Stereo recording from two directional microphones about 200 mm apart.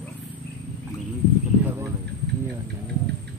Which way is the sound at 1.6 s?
10° right (ahead or behind).